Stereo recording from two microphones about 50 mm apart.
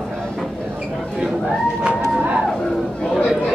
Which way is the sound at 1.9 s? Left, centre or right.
Right.